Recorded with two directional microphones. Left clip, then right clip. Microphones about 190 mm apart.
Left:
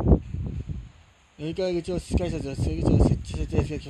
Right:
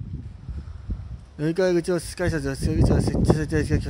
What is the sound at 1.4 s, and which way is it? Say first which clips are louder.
Speech: right 6 dB; 15° right (ahead or behind).